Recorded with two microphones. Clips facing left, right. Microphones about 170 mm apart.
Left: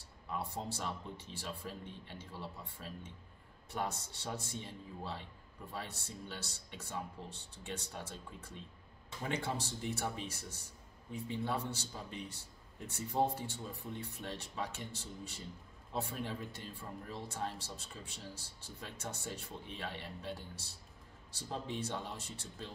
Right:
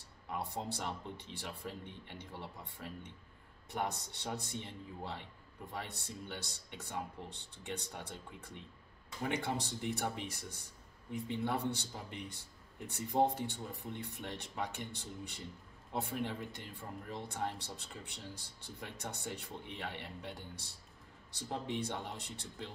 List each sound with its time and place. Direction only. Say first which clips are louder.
0.3 s speech: right 1 dB; 20° right (ahead or behind)